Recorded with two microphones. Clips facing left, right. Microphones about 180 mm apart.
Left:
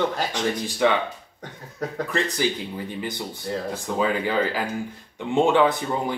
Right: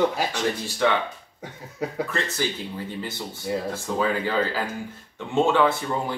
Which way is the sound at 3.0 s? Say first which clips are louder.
Left 1 dB; 15° left (ahead or behind).